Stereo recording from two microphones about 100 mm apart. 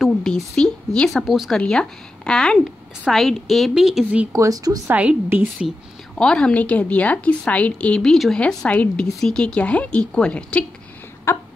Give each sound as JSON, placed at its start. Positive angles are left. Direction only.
{"t": 0.0, "sound": "a woman's voice", "side_deg": 5}
{"t": 1.6, "sound": "a woman's voice", "side_deg": 10}
{"t": 4.3, "sound": "speech", "side_deg": -35}
{"t": 4.9, "sound": "a woman's voice", "side_deg": -15}
{"t": 6.1, "sound": "a woman's voice", "side_deg": 10}
{"t": 11.3, "sound": "a sound", "side_deg": 25}